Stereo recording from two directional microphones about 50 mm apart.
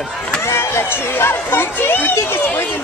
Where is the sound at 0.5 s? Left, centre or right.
Left.